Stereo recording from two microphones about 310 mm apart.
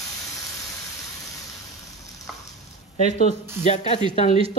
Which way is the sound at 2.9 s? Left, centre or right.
Right.